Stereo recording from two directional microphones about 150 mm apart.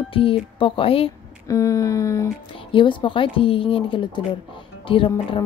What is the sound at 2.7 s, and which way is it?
Music, 35° left (ahead or behind).